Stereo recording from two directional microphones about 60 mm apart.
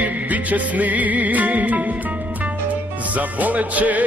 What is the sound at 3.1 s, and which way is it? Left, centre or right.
Speech, right.